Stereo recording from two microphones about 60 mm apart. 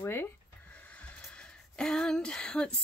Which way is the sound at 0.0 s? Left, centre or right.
Left.